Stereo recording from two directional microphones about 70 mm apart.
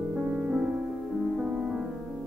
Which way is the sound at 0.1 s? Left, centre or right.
Centre.